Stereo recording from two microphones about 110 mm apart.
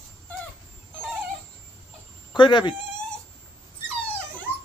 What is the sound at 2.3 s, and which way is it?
Speech, 45° left (ahead or behind).